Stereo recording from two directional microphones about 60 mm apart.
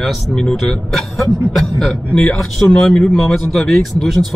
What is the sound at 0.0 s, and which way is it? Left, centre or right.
A man's voice, centre.